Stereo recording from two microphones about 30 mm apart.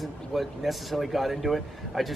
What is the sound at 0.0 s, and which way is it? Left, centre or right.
Speech, centre.